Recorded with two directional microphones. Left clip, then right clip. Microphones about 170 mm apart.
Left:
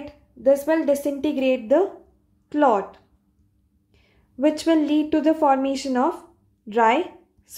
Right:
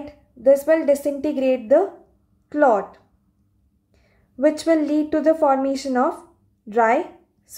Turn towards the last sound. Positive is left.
turn(degrees=20)  # may be behind; listen again after turning